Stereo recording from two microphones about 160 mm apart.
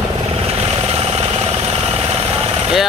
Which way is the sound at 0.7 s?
40° right (ahead or behind).